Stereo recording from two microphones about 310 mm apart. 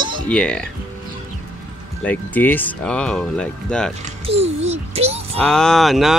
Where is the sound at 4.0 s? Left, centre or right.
Centre.